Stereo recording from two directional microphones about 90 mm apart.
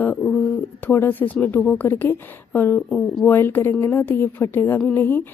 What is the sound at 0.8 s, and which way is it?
A woman's voice, 20° left (ahead or behind).